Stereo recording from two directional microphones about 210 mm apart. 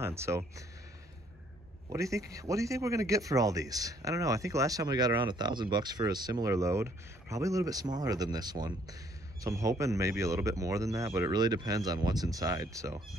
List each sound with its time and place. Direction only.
0.0 s speech: 15° right (ahead or behind)
1.9 s speech: 15° right (ahead or behind)